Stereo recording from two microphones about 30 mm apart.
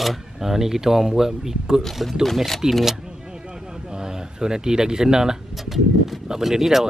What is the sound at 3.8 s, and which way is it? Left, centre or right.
Speech, right.